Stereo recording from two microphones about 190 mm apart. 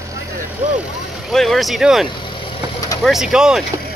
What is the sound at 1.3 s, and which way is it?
Speech, centre (ahead or behind).